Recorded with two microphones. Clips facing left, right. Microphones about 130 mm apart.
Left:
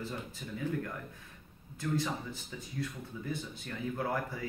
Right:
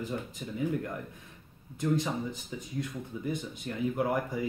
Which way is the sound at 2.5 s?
20° right (ahead or behind).